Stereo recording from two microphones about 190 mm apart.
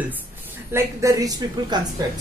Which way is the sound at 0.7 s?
15° right (ahead or behind).